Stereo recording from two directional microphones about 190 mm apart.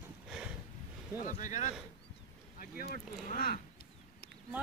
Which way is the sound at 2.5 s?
50° left (ahead or behind).